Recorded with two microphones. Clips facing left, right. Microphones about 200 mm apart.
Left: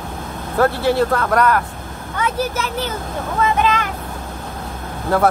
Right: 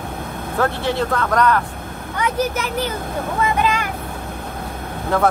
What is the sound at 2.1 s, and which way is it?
Speech, 15° right (ahead or behind).